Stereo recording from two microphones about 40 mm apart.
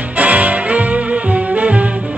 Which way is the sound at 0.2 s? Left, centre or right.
Right.